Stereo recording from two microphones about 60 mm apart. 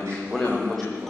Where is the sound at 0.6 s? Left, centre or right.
Centre.